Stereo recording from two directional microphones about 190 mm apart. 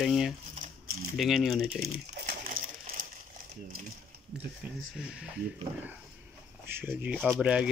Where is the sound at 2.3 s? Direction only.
45° right (ahead or behind).